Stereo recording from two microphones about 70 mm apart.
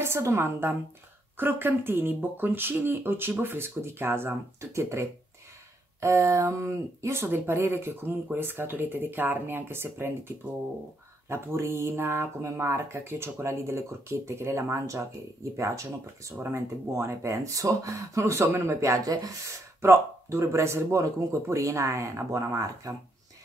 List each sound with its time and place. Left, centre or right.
0.0 s a woman's voice: right
16.3 s speech: right
19.8 s speech: right